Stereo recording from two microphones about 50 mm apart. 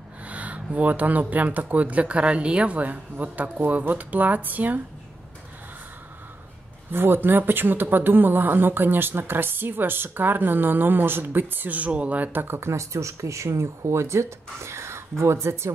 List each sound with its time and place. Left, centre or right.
0.3 s a sound: right
0.7 s speech: right
6.9 s speech: right
12.7 s speech: right